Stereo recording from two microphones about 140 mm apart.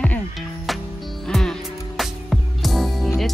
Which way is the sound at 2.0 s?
Centre (ahead or behind).